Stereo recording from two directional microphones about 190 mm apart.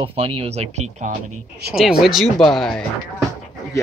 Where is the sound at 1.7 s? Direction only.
Centre (ahead or behind).